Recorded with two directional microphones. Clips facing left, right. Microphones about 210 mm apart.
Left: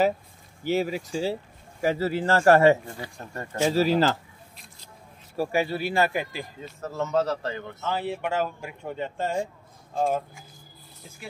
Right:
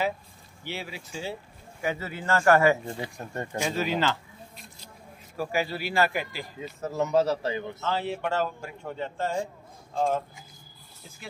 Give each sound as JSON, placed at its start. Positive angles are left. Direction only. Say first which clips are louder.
{"t": 0.7, "sound": "speech", "louder": "left 12 dB", "side_deg": 45}
{"t": 3.0, "sound": "speech", "louder": "right 2 dB", "side_deg": -20}
{"t": 3.6, "sound": "speech", "louder": "left 7 dB", "side_deg": 35}
{"t": 5.3, "sound": "speech", "louder": "left 4 dB", "side_deg": 30}
{"t": 6.6, "sound": "speech", "louder": "right 3 dB", "side_deg": -10}
{"t": 7.8, "sound": "a man's voice", "louder": "left 2 dB", "side_deg": 15}